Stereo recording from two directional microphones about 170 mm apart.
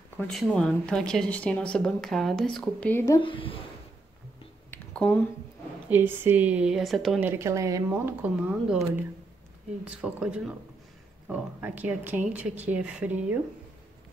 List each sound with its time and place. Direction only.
0.2 s speech: centre (ahead or behind)
3.2 s speech: 30° left (ahead or behind)
4.6 s a sound: 10° left (ahead or behind)
5.9 s speech: 10° right (ahead or behind)
7.2 s speech: 15° right (ahead or behind)